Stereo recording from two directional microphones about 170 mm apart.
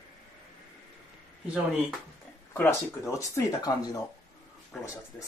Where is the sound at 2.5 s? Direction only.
15° left (ahead or behind).